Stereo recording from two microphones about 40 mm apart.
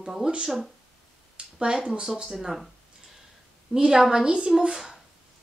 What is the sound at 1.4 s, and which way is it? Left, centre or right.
Speech, centre.